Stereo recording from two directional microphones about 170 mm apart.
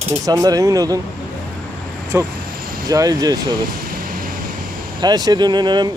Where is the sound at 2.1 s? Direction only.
15° right (ahead or behind).